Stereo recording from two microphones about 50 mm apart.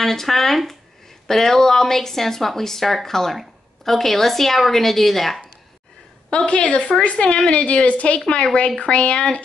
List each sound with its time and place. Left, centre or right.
0.0 s speech: centre
6.3 s a woman's voice: left